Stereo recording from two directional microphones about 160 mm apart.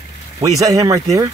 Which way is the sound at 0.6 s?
20° right (ahead or behind).